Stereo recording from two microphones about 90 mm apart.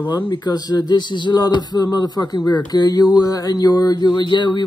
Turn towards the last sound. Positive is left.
turn(degrees=60)  # may be behind; listen again after turning